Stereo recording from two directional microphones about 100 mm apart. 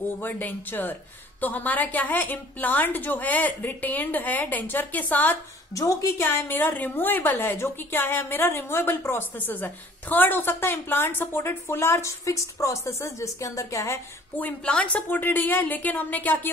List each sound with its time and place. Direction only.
0.2 s a woman's voice: 20° left (ahead or behind)
5.8 s a woman's voice: 35° left (ahead or behind)
6.2 s a woman's voice: 20° left (ahead or behind)
14.3 s a woman's voice: 10° left (ahead or behind)